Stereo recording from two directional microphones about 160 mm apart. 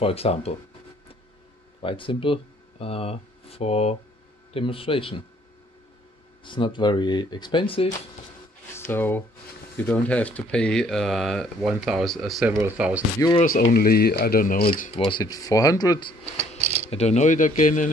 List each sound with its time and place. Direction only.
0.0 s speech: 40° left (ahead or behind)
1.8 s speech: 35° left (ahead or behind)
6.4 s speech: 30° left (ahead or behind)
8.7 s speech: 15° left (ahead or behind)
12.4 s speech: 10° right (ahead or behind)
13.7 s speech: 70° left (ahead or behind)
15.0 s speech: 25° left (ahead or behind)
16.3 s mechanisms: 45° right (ahead or behind)
16.9 s speech: 45° left (ahead or behind)